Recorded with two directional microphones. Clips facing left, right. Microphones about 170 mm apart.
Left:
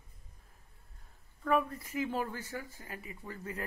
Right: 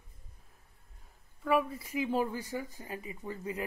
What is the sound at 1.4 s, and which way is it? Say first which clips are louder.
Speech: right 1 dB; 5° right (ahead or behind).